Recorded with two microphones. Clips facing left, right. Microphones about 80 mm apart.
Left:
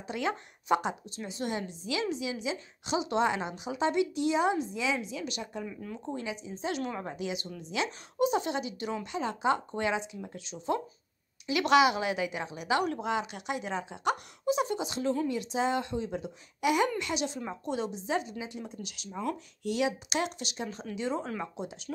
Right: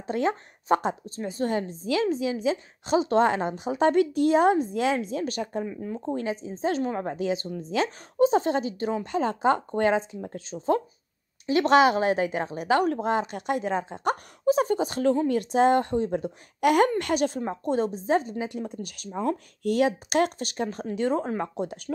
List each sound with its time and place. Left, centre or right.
0.0 s a woman's voice: right
5.7 s speech: right
5.9 s a woman's voice: right
19.0 s speech: right
19.3 s a woman's voice: right